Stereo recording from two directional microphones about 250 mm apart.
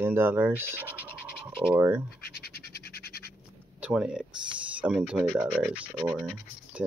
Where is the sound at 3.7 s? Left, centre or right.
Centre.